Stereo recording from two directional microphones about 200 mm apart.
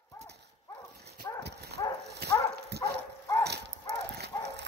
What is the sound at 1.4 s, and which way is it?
Clip-clop, 55° right (ahead or behind).